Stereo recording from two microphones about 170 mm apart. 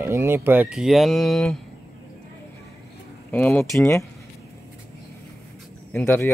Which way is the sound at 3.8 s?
15° left (ahead or behind).